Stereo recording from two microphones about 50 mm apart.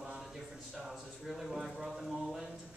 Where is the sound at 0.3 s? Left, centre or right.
Centre.